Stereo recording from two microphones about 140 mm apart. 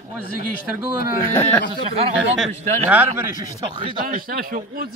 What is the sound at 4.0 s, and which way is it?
Speech, 90° right.